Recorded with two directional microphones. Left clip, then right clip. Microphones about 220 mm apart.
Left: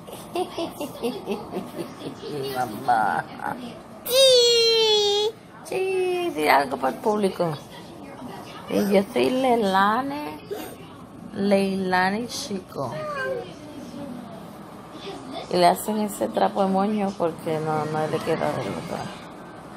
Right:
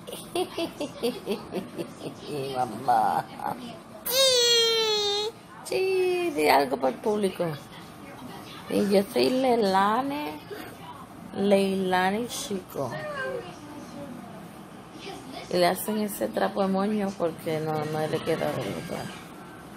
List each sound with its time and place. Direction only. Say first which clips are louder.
0.3 s speech: left 2 dB; 10° right (ahead or behind)
2.6 s a woman's voice: left 1 dB; centre (ahead or behind)
4.1 s a sound: left 5 dB; 10° right (ahead or behind)
4.8 s a sound: left 6 dB; 40° right (ahead or behind)
5.1 s a child's voice: left 6 dB; 5° right (ahead or behind)
7.1 s a woman's voice: left 4 dB; 5° left (ahead or behind)
8.7 s a woman's voice: left 2 dB; 5° right (ahead or behind)
11.3 s speech: left 1 dB; 5° right (ahead or behind)
15.5 s a woman's voice: left 5 dB; centre (ahead or behind)